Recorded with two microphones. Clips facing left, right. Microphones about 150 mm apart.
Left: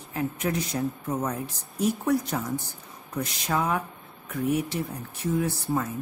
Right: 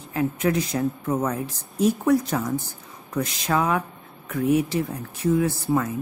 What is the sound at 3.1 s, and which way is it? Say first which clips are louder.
Speech: right 4 dB; 90° right.